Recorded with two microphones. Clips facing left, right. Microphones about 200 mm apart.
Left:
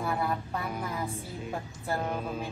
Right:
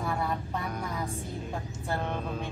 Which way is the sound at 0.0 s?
Centre (ahead or behind).